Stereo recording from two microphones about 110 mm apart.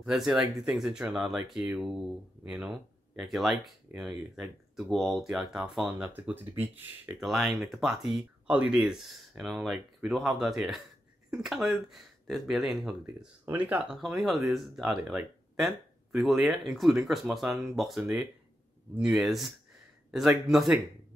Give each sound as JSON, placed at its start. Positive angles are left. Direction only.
{"t": 0.0, "sound": "speech", "side_deg": -5}
{"t": 5.9, "sound": "speech", "side_deg": -10}
{"t": 7.2, "sound": "speech", "side_deg": 0}
{"t": 13.5, "sound": "speech", "side_deg": -15}
{"t": 14.0, "sound": "speech", "side_deg": 0}